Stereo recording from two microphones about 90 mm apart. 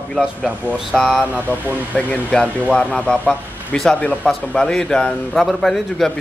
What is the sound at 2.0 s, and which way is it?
A man's voice, 15° left (ahead or behind).